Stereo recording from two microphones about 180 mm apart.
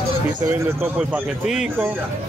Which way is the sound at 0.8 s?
5° right (ahead or behind).